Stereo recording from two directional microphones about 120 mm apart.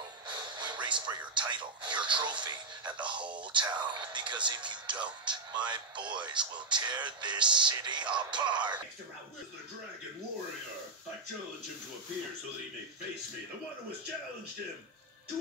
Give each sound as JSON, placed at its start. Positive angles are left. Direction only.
{"t": 0.3, "sound": "speech", "side_deg": -40}